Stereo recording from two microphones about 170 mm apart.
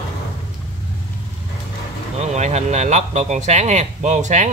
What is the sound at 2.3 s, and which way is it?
Speech, 40° right (ahead or behind).